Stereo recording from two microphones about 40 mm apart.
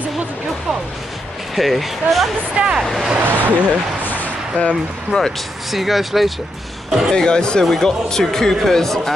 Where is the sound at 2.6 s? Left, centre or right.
Right.